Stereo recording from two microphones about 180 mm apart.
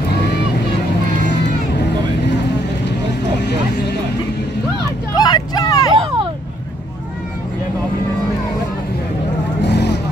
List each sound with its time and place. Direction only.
0.1 s boat: 65° left (ahead or behind)
5.1 s vehicle: 25° left (ahead or behind)
5.9 s vehicle: 25° right (ahead or behind)
9.6 s vehicle: 70° left (ahead or behind)